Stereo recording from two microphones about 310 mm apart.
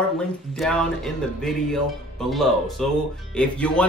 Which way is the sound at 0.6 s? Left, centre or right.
Centre.